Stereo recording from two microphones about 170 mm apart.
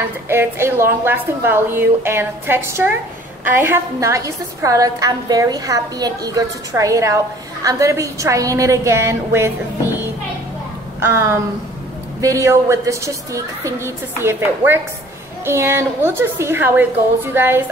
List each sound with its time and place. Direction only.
0.3 s a woman's voice: 15° right (ahead or behind)
11.0 s a woman's voice: 15° right (ahead or behind)